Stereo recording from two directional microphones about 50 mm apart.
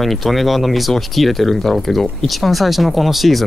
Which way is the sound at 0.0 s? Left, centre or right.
Centre.